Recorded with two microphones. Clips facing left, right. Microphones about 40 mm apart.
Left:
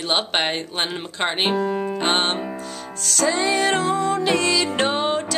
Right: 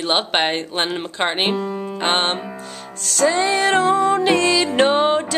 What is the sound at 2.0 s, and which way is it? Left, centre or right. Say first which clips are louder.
Music: right 4 dB; centre.